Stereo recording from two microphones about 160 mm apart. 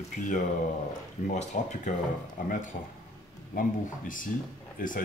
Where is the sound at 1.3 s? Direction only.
45° left (ahead or behind).